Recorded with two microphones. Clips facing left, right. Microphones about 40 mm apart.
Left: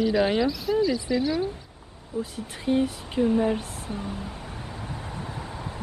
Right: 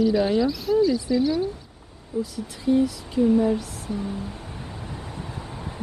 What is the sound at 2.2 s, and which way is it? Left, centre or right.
Speech, left.